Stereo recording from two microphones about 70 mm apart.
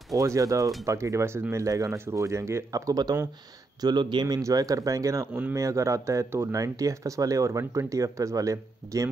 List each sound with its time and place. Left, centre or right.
0.1 s speech: right
2.7 s speech: right
3.8 s speech: right
4.4 s speech: right
6.5 s speech: right